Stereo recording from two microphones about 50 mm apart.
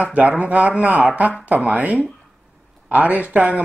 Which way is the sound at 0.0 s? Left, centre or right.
Right.